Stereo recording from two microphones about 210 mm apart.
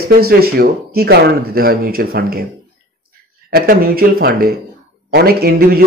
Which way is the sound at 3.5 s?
45° right (ahead or behind).